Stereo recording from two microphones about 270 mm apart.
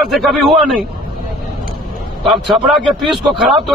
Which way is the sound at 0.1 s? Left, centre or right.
Centre.